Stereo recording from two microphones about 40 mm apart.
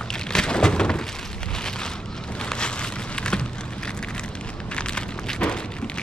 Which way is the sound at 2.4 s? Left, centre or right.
Left.